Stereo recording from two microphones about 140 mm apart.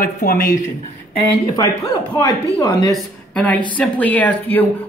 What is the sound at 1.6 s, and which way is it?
Speech, 20° left (ahead or behind).